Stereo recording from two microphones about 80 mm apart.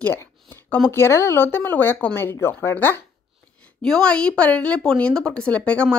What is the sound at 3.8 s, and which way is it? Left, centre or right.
Speech, centre.